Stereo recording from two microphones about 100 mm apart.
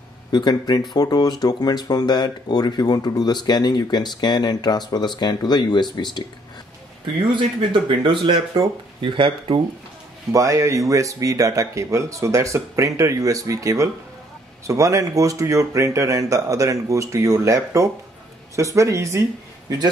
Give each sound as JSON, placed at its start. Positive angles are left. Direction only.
{"t": 0.3, "sound": "speech", "side_deg": 45}
{"t": 7.3, "sound": "speech", "side_deg": -60}
{"t": 10.3, "sound": "speech", "side_deg": -35}